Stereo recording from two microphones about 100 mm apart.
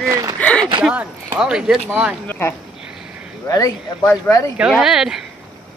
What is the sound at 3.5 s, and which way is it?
Speech, 35° left (ahead or behind).